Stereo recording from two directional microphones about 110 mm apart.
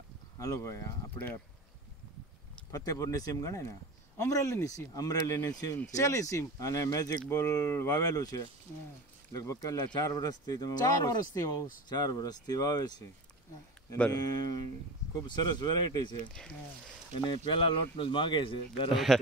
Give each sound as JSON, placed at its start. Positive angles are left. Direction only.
{"t": 0.4, "sound": "speech", "side_deg": 30}
{"t": 2.7, "sound": "speech", "side_deg": 30}
{"t": 14.1, "sound": "speech", "side_deg": 35}
{"t": 17.5, "sound": "a man's voice", "side_deg": 50}
{"t": 18.9, "sound": "speech", "side_deg": 0}